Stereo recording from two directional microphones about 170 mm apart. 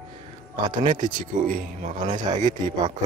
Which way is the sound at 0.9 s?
50° right (ahead or behind).